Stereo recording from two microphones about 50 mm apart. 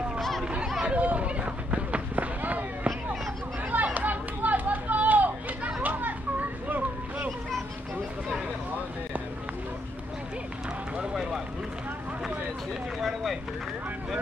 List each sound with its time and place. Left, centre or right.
0.2 s a sound: centre
0.8 s run: right
3.7 s chatter: right
5.8 s children playing: right
11.0 s run: centre
13.0 s a sound: centre